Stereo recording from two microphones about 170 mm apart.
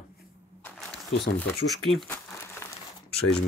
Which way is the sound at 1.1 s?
80° left.